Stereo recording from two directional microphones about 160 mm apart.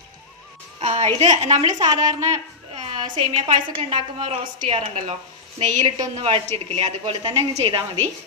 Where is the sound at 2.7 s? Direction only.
30° right (ahead or behind).